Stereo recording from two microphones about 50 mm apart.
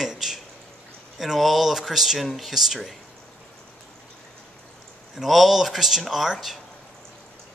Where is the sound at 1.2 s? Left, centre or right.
Centre.